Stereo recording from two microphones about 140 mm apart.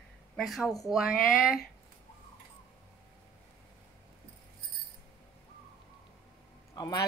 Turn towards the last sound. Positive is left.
turn(degrees=25)  # may be behind; listen again after turning